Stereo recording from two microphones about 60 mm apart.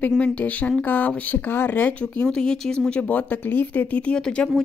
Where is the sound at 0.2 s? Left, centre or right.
Left.